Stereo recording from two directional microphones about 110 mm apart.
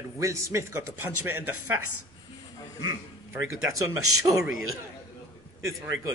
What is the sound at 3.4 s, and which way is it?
A man's voice, 30° right (ahead or behind).